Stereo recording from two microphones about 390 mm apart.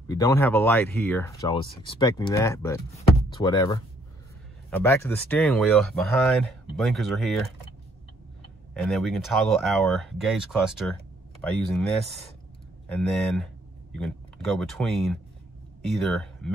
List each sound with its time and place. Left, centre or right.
0.1 s speech: centre
8.7 s speech: centre